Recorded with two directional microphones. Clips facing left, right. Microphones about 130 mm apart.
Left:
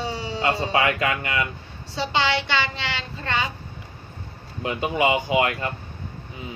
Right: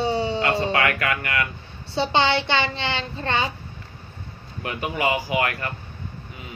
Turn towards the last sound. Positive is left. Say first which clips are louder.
# left 2 dB
turn(degrees=25)  # may be behind; listen again after turning